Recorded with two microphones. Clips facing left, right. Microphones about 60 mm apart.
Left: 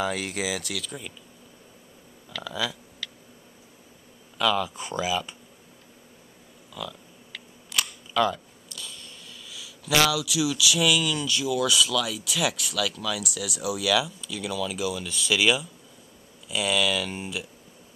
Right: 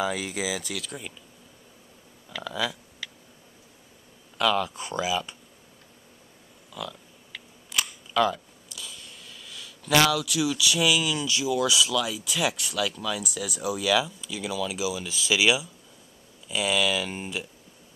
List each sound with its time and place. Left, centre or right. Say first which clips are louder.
0.0 s speech: even; centre
2.4 s speech: right 1 dB; centre
3.0 s tick: even; centre
4.4 s speech: even; centre
6.7 s speech: even; centre